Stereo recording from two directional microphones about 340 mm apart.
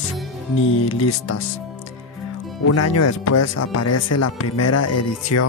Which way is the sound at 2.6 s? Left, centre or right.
Left.